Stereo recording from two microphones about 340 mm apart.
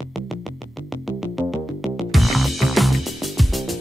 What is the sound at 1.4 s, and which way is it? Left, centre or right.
Music, centre.